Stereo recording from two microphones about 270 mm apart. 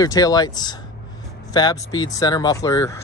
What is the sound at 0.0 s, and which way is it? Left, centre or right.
Speech, centre.